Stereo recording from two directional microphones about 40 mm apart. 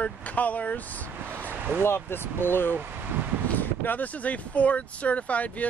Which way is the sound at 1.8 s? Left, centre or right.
Left.